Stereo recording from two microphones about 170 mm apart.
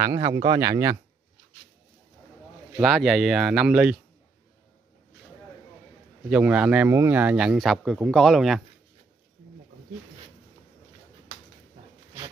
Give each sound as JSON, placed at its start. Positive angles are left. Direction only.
{"t": 0.2, "sound": "speech", "side_deg": -25}
{"t": 2.8, "sound": "speech", "side_deg": 0}
{"t": 6.3, "sound": "speech", "side_deg": -5}